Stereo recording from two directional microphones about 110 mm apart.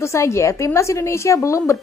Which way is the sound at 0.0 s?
25° left (ahead or behind).